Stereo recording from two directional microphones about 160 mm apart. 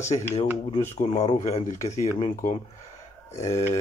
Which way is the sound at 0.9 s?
45° left (ahead or behind).